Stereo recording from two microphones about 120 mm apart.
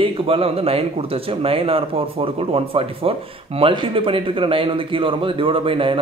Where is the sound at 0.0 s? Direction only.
55° right (ahead or behind).